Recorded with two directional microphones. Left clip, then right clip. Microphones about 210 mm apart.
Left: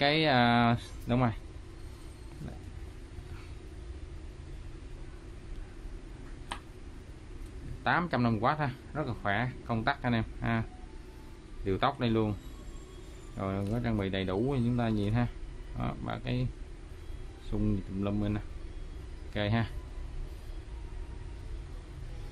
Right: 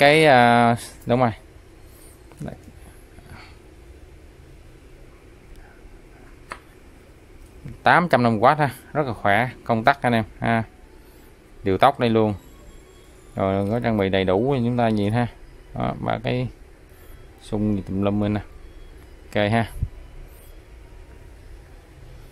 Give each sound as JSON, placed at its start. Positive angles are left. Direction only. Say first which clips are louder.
{"t": 0.0, "sound": "speech", "louder": "right 13 dB", "side_deg": -45}
{"t": 7.8, "sound": "speech", "louder": "right 13 dB", "side_deg": -50}
{"t": 13.4, "sound": "speech", "louder": "right 13 dB", "side_deg": -45}
{"t": 17.5, "sound": "speech", "louder": "right 10 dB", "side_deg": -40}